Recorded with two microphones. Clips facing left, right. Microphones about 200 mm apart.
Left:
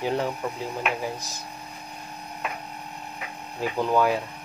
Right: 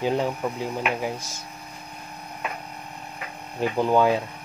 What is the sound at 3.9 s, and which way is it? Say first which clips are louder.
Speech: right 2 dB; 20° right (ahead or behind).